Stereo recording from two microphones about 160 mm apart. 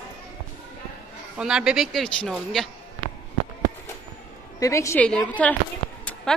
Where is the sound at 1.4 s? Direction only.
5° right (ahead or behind).